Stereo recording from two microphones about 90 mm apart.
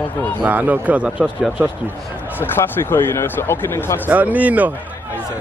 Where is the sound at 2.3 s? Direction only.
25° left (ahead or behind).